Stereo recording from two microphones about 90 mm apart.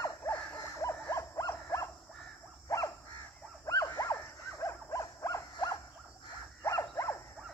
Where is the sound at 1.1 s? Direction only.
40° left (ahead or behind).